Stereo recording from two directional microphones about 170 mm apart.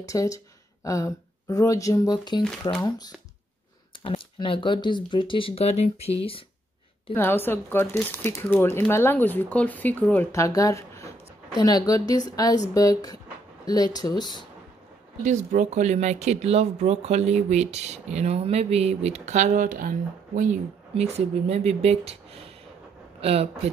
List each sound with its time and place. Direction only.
0.0 s speech: 20° left (ahead or behind)
4.0 s speech: 30° left (ahead or behind)
7.2 s speech: 10° left (ahead or behind)
15.2 s speech: 45° right (ahead or behind)
20.9 s speech: 35° right (ahead or behind)